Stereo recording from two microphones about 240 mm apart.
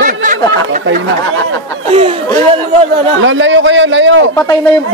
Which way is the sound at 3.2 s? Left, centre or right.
Right.